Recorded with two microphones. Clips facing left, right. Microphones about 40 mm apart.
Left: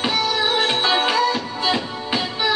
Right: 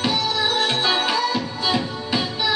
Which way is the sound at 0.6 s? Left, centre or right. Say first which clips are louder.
Left 2 dB; centre.